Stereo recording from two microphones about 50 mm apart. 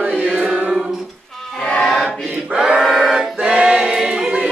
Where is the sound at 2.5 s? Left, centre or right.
Centre.